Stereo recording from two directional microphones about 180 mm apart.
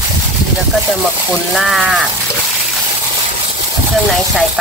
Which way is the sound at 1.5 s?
Centre (ahead or behind).